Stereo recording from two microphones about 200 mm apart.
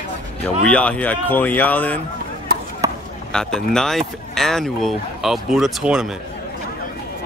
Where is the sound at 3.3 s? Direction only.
5° left (ahead or behind).